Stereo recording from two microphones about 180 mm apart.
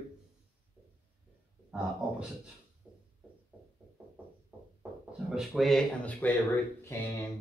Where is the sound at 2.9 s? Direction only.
5° right (ahead or behind).